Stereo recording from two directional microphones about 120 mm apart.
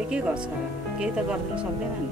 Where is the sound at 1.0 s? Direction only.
10° right (ahead or behind).